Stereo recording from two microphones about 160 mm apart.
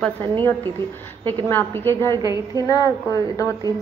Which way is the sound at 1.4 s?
15° left (ahead or behind).